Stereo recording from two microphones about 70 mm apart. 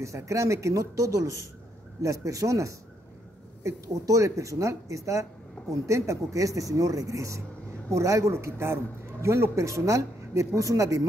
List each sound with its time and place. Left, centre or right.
0.0 s speech: right